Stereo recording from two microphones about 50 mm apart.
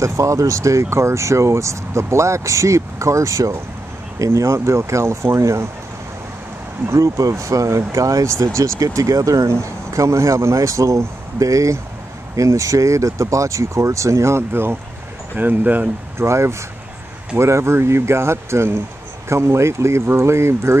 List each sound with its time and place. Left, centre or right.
0.0 s speech: right
6.9 s speech: right
14.5 s speech: right
15.3 s speech: right
16.2 s speech: right